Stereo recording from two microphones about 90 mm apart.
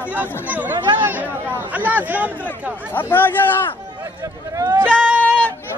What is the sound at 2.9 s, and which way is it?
Chatter, 20° left (ahead or behind).